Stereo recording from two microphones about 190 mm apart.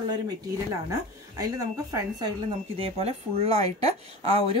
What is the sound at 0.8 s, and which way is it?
Speech, 20° right (ahead or behind).